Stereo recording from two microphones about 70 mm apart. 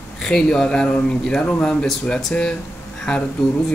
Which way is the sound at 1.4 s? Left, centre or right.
Left.